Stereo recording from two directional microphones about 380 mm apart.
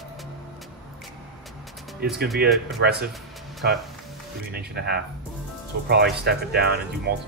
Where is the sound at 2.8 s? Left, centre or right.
Right.